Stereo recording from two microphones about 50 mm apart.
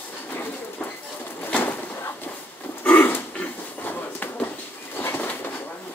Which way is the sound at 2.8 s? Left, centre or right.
Left.